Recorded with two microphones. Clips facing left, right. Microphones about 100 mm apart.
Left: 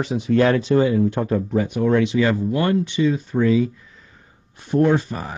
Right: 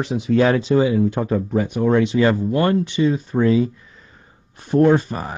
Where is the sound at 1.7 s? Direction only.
30° right (ahead or behind).